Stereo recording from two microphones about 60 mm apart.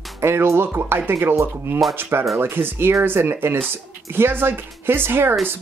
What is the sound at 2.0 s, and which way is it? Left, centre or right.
Speech, right.